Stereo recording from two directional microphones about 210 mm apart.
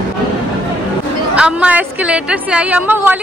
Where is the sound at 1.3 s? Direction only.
5° right (ahead or behind).